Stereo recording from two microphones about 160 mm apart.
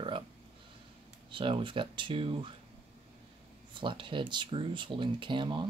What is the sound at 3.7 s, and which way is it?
Speech, 30° right (ahead or behind).